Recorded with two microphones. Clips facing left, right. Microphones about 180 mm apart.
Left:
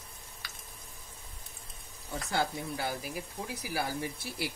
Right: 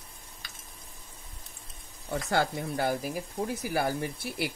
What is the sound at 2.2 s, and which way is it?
Speech, 55° right (ahead or behind).